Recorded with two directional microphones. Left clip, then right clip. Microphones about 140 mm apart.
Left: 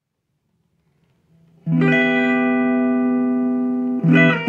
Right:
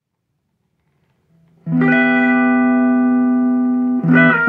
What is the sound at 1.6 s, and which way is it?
Music, 10° left (ahead or behind).